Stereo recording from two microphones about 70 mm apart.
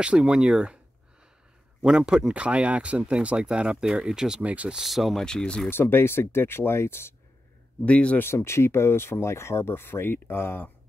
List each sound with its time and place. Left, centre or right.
0.0 s speech: centre
1.9 s speech: centre
4.7 s speech: centre
5.2 s speech: centre
5.7 s speech: left
7.8 s speech: centre
8.2 s speech: left